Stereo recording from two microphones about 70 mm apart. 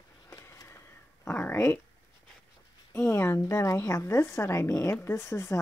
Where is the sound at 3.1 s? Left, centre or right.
Left.